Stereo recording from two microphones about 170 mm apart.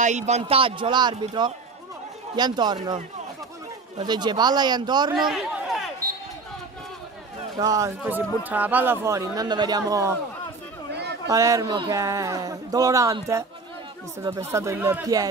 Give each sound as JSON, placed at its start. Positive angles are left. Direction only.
{"t": 0.0, "sound": "speech", "side_deg": -40}
{"t": 4.0, "sound": "speech", "side_deg": -25}
{"t": 5.1, "sound": "chatter", "side_deg": 0}
{"t": 7.5, "sound": "speech", "side_deg": -20}
{"t": 11.2, "sound": "speech", "side_deg": -20}